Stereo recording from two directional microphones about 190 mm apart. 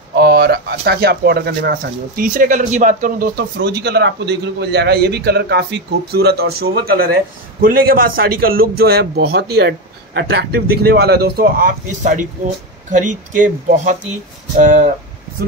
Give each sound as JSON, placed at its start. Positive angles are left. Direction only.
{"t": 0.1, "sound": "speech", "side_deg": -55}